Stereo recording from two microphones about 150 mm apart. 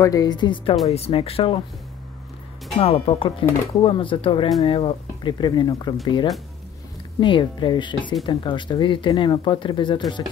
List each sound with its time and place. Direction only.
0.0 s speech: 25° left (ahead or behind)
0.8 s speech: 40° left (ahead or behind)
2.8 s speech: 40° left (ahead or behind)